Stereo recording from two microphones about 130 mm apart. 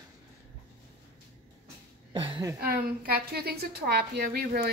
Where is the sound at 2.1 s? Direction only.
40° right (ahead or behind).